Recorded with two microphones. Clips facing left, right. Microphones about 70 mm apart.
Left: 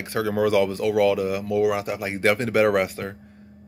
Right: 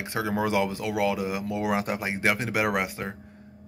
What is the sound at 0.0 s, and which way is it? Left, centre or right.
Speech, right.